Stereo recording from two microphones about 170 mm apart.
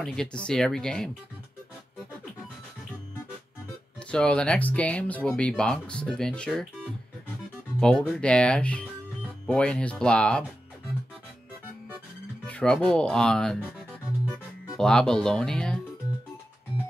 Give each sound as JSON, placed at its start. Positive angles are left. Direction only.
{"t": 0.0, "sound": "speech", "side_deg": 5}
{"t": 4.1, "sound": "speech", "side_deg": 5}
{"t": 8.2, "sound": "speech", "side_deg": 5}
{"t": 12.4, "sound": "speech", "side_deg": 5}
{"t": 13.6, "sound": "music", "side_deg": -5}
{"t": 14.8, "sound": "speech", "side_deg": 5}